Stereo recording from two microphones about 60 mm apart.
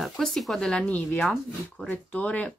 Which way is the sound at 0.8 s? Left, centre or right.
Left.